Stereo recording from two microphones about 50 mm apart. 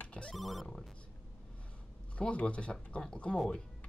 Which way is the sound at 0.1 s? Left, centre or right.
Centre.